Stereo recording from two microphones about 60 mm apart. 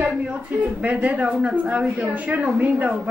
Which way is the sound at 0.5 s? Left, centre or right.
Right.